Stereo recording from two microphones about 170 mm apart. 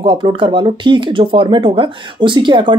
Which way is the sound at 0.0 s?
30° right (ahead or behind).